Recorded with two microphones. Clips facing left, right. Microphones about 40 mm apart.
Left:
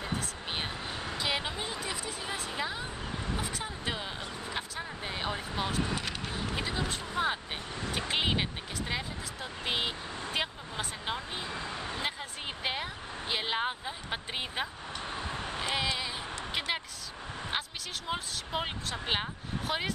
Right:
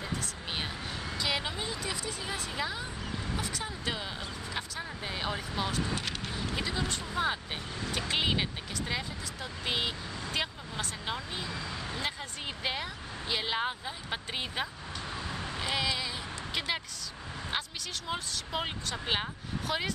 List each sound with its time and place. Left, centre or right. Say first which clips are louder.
0.0 s vehicle: left 1 dB; centre
1.2 s a sound: right 1 dB; centre
3.3 s vehicle: even; centre
4.6 s a sound: right 1 dB; centre
6.9 s speech: even; centre
11.3 s speech: even; left
12.6 s speech: even; centre
15.0 s vehicle: left 1 dB; left
15.7 s speech: right 1 dB; centre
16.5 s a sound: even; centre
17.5 s speech: right 1 dB; centre
19.7 s speech: even; centre